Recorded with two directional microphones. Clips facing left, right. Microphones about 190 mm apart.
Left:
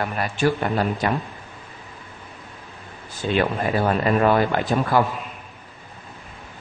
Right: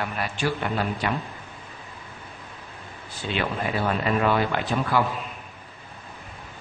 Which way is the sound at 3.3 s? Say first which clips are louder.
Left 6 dB; 45° left (ahead or behind).